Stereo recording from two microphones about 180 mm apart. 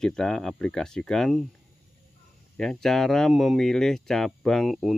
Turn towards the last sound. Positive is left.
turn(degrees=0)  # may be behind; listen again after turning